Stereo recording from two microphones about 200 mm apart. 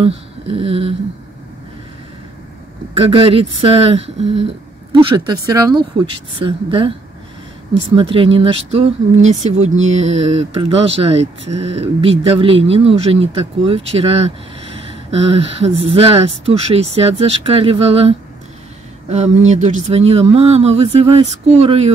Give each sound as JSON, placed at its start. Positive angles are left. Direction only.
{"t": 0.0, "sound": "speech", "side_deg": -30}
{"t": 3.0, "sound": "a woman's voice", "side_deg": -25}
{"t": 7.9, "sound": "a woman's voice", "side_deg": -25}